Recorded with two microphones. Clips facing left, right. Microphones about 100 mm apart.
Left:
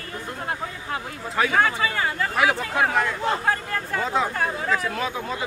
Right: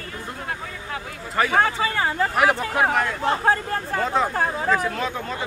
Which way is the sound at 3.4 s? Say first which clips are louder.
Right 4 dB; 30° right (ahead or behind).